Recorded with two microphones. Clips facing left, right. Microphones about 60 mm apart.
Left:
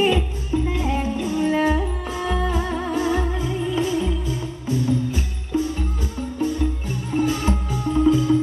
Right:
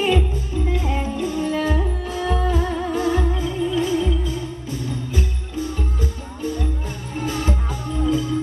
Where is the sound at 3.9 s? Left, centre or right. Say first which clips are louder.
Right 2 dB; left.